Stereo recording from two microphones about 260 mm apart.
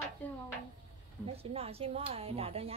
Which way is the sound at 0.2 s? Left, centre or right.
Centre.